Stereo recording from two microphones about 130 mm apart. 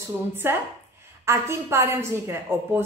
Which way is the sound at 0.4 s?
15° right (ahead or behind).